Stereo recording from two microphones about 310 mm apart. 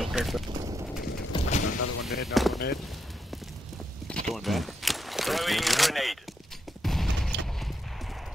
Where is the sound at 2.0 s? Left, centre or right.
Centre.